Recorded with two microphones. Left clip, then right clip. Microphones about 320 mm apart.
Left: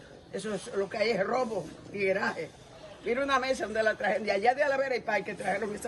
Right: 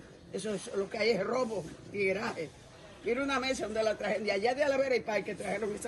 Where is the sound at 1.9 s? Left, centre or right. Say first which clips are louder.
Left 3 dB; left.